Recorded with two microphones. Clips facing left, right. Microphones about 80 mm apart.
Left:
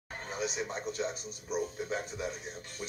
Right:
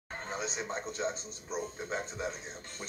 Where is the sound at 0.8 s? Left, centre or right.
Right.